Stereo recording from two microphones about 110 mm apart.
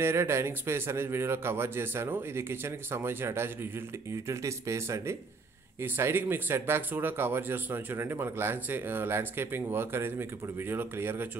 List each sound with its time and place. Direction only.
0.0 s speech: 25° right (ahead or behind)